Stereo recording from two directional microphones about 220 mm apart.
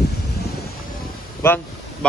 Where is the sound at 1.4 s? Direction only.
10° left (ahead or behind).